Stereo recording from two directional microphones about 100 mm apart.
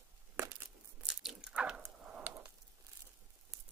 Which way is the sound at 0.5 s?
10° right (ahead or behind).